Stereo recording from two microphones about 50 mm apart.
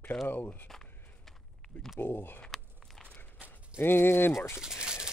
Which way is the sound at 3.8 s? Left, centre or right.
Left.